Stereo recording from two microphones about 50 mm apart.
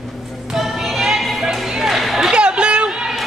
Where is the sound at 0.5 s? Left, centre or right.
Centre.